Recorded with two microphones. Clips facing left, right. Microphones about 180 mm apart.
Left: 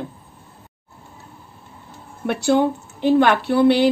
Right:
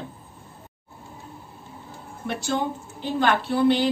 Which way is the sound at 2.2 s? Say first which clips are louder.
Left 9 dB; 70° left (ahead or behind).